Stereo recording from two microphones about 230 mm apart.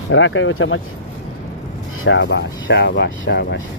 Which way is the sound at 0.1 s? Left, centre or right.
Left.